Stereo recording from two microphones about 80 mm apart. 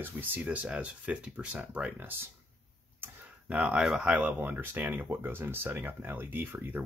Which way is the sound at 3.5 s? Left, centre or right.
Centre.